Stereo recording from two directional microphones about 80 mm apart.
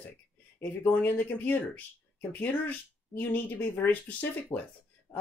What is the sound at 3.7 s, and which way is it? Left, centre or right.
Speech, left.